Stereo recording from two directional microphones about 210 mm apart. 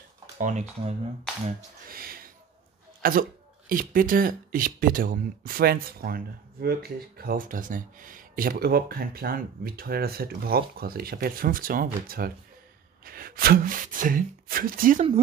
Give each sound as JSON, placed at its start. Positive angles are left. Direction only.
{"t": 0.4, "sound": "speech", "side_deg": -35}